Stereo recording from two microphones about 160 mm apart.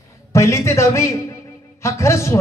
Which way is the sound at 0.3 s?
20° left (ahead or behind).